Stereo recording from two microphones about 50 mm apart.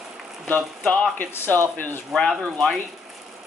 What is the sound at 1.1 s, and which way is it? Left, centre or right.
Speech, left.